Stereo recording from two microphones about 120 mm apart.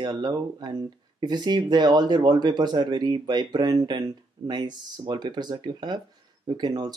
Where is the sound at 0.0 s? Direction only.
35° right (ahead or behind).